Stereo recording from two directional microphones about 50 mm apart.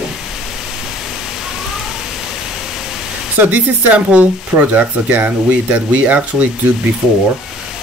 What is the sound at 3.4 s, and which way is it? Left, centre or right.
Speech, right.